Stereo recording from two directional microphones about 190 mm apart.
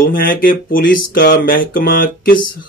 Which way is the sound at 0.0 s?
50° left (ahead or behind).